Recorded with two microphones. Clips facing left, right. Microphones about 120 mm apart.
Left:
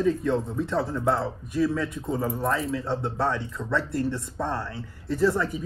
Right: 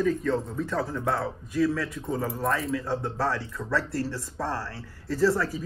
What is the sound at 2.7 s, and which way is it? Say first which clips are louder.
A man's voice: left 1 dB; 25° left (ahead or behind).